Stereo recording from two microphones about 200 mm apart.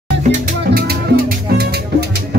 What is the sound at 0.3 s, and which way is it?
Music, 50° right (ahead or behind).